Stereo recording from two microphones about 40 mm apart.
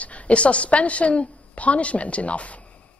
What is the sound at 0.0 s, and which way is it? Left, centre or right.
A man's voice, left.